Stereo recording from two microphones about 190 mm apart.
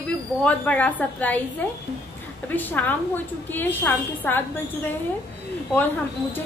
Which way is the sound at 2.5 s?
10° left (ahead or behind).